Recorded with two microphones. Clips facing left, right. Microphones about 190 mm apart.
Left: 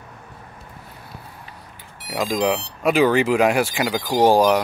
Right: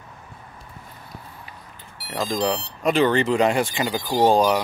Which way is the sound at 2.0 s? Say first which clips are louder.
Left 3 dB; 10° left (ahead or behind).